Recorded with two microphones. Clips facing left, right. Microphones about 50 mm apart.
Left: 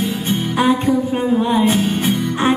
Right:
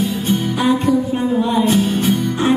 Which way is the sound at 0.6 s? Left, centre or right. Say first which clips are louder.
Left 2 dB; left.